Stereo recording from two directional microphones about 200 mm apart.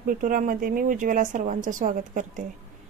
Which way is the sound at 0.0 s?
45° right (ahead or behind).